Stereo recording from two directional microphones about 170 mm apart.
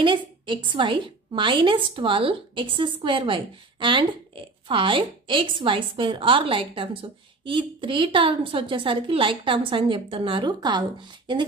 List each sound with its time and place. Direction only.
0.0 s a woman's voice: 30° right (ahead or behind)